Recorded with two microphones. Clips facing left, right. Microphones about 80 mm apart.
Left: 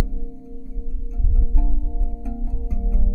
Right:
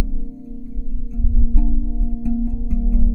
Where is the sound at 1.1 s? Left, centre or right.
Centre.